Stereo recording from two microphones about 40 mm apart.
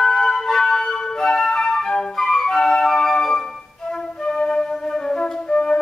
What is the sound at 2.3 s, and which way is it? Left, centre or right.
Flute, centre.